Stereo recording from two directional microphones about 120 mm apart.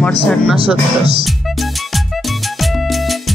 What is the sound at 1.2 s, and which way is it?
Music, centre (ahead or behind).